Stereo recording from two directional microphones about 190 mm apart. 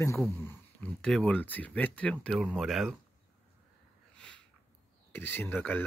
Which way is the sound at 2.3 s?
5° right (ahead or behind).